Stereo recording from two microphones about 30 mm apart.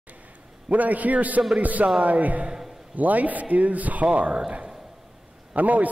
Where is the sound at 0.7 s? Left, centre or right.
Right.